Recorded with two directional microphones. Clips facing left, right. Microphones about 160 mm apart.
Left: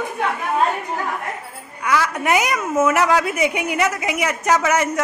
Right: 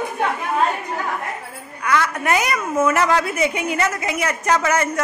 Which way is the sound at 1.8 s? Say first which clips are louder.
Even; 15° left (ahead or behind).